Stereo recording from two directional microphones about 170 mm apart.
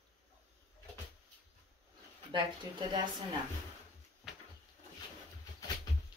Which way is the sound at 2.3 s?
25° right (ahead or behind).